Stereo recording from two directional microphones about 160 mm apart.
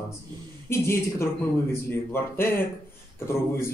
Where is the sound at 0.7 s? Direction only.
15° left (ahead or behind).